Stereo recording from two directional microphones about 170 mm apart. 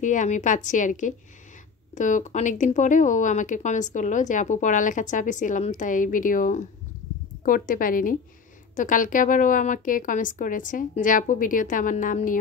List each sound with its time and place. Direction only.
0.0 s speech: 45° left (ahead or behind)